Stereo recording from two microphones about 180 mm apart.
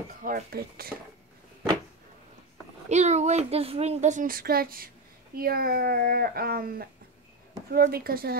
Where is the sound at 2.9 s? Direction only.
40° right (ahead or behind); by 8.4 s 55° right (ahead or behind).